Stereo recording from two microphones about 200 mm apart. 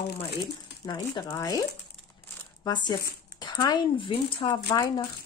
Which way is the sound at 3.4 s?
20° left (ahead or behind).